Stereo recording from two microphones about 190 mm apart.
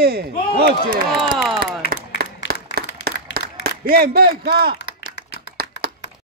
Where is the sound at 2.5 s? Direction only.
55° right (ahead or behind).